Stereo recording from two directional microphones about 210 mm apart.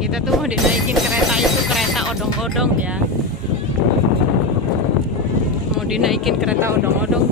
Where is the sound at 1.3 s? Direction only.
Centre (ahead or behind).